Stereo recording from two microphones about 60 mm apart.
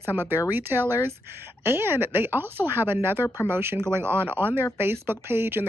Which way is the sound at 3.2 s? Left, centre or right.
Left.